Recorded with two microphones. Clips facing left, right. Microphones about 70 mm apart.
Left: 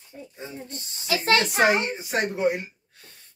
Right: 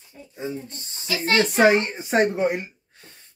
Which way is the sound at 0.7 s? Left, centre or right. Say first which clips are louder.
Left 2 dB; left.